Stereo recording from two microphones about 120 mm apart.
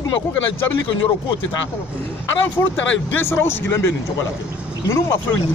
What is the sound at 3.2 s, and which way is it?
Speech, 20° left (ahead or behind).